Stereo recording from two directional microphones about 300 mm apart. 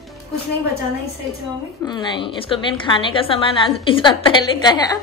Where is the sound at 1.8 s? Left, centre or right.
Centre.